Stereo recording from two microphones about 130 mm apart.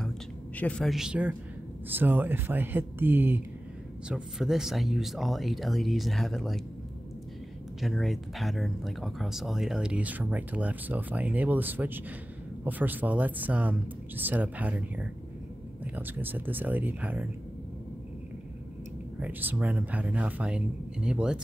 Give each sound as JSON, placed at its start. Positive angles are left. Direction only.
{"t": 0.6, "sound": "speech", "side_deg": 10}
{"t": 4.1, "sound": "speech", "side_deg": -5}
{"t": 7.8, "sound": "speech", "side_deg": 0}
{"t": 19.1, "sound": "speech", "side_deg": -10}